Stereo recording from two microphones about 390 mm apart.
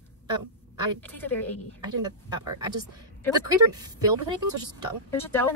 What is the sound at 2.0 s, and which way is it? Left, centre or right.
Speech, centre.